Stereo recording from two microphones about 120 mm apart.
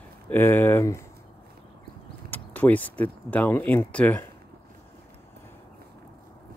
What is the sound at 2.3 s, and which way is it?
Speech, 15° left (ahead or behind).